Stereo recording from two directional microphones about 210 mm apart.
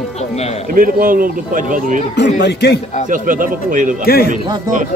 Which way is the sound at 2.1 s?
55° left (ahead or behind).